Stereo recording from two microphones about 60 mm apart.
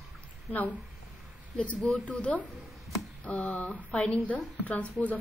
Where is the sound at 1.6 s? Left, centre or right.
Left.